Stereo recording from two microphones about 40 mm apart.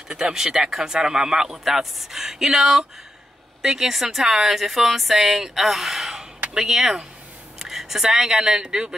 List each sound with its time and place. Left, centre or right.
0.1 s a woman's voice: centre